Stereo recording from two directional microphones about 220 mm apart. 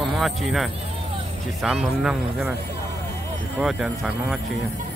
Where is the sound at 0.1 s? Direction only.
Centre (ahead or behind).